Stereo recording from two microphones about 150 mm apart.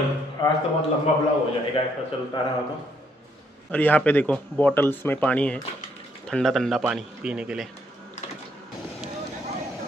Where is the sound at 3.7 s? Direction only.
10° left (ahead or behind); by 7.6 s 5° right (ahead or behind).